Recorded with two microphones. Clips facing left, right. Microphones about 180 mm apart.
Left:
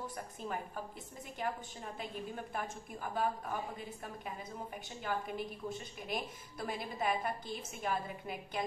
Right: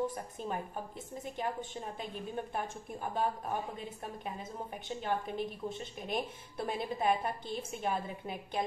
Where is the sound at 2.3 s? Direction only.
25° right (ahead or behind).